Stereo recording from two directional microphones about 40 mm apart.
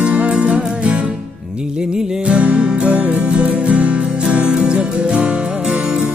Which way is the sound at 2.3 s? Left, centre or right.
Right.